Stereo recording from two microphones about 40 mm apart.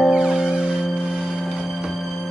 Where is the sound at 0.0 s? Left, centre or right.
Centre.